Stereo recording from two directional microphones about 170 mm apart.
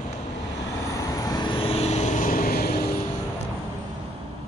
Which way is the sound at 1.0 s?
20° left (ahead or behind).